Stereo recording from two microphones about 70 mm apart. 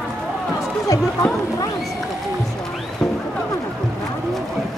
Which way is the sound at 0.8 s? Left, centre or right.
Left.